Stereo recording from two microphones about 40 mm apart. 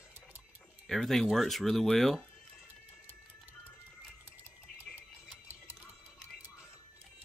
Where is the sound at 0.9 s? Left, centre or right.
Centre.